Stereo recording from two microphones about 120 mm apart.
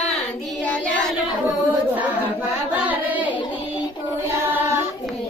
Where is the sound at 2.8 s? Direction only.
15° right (ahead or behind).